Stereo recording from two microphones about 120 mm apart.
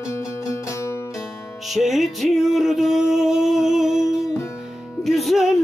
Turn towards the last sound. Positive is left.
turn(degrees=0)  # may be behind; listen again after turning